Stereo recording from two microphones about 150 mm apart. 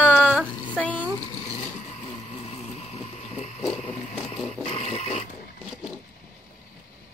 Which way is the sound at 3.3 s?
45° left (ahead or behind).